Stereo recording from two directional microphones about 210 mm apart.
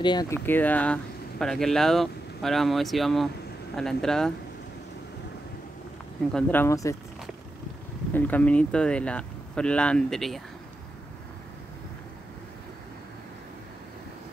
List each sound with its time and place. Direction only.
0.0 s speech: 20° left (ahead or behind); by 4.3 s centre (ahead or behind)
6.3 s speech: 10° left (ahead or behind)
8.1 s speech: 10° left (ahead or behind)